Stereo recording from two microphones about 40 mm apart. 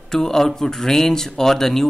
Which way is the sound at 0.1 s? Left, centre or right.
Centre.